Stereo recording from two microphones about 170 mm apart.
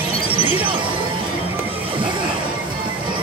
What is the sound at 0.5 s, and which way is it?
Music, 30° right (ahead or behind).